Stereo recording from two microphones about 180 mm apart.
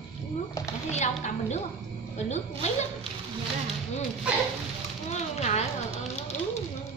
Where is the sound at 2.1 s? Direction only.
40° left (ahead or behind).